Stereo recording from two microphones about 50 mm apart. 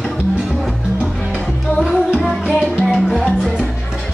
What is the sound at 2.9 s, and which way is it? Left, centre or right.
Music, centre.